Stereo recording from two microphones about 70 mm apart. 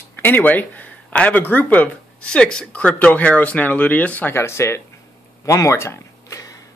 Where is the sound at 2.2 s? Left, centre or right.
Centre.